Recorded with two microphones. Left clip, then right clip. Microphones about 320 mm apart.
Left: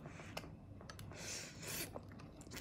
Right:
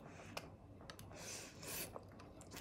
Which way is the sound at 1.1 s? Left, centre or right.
Left.